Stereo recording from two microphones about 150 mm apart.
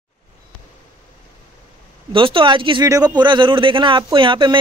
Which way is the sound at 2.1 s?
35° right (ahead or behind).